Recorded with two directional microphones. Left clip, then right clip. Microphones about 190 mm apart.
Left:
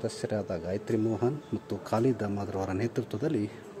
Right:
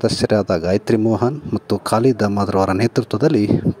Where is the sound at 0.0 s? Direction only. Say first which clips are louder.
Right 16 dB; 45° right (ahead or behind).